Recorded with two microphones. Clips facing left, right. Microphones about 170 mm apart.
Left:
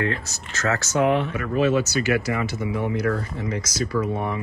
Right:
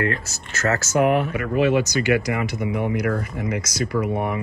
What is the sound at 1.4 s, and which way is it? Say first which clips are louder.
Speech: right 1 dB; 15° right (ahead or behind).